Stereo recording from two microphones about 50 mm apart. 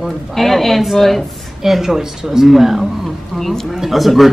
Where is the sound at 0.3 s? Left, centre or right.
Centre.